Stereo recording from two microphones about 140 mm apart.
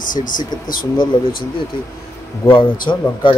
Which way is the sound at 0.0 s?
70° left (ahead or behind).